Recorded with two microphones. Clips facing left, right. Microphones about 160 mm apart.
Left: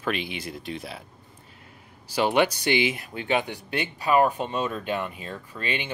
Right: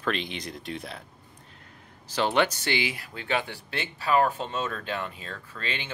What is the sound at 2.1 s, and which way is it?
Speech, 10° left (ahead or behind).